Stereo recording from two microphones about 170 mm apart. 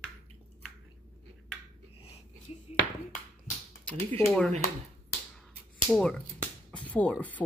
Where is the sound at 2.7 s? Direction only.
35° left (ahead or behind).